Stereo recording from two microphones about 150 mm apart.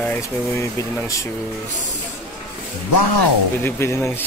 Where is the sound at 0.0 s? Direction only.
15° left (ahead or behind).